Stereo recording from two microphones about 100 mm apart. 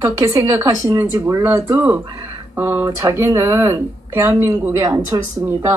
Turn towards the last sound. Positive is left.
turn(degrees=-25)  # may be behind; listen again after turning